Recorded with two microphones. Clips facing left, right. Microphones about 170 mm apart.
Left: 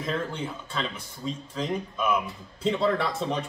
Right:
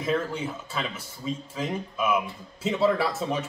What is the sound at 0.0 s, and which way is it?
A man's voice, 5° right (ahead or behind).